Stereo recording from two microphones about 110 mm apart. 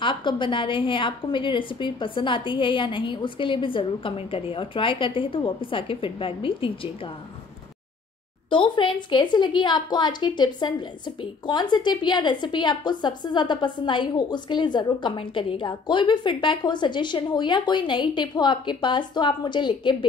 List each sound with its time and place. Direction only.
0.0 s a woman's voice: 45° left (ahead or behind)
8.5 s a woman's voice: 50° left (ahead or behind)